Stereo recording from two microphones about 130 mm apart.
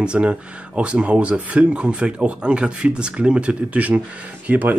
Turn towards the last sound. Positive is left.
turn(degrees=-10)  # may be behind; listen again after turning